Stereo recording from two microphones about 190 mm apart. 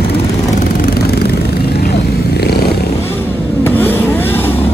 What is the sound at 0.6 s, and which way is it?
Vehicle, 50° left (ahead or behind).